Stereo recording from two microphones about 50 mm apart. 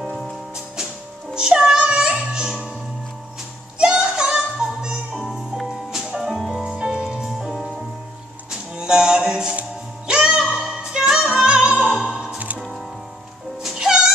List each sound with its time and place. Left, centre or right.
0.1 s music: centre
1.3 s music: centre
3.7 s music: centre
5.1 s music: centre
5.7 s music: centre
6.3 s music: centre
6.6 s music: centre
8.7 s music: centre
12.5 s music: centre